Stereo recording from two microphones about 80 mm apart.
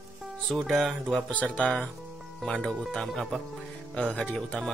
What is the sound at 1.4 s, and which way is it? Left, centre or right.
Speech, centre.